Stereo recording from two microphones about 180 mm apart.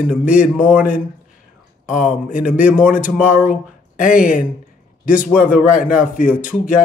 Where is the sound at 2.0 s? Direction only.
45° left (ahead or behind).